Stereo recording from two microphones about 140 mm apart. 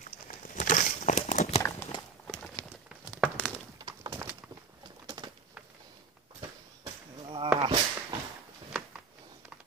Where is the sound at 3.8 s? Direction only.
25° right (ahead or behind).